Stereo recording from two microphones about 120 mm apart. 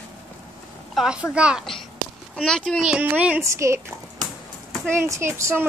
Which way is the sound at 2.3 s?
5° left (ahead or behind).